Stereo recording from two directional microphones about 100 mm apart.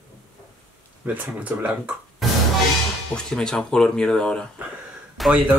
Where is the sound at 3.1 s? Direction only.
5° left (ahead or behind).